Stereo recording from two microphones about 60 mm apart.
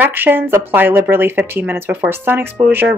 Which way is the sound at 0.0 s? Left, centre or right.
Right.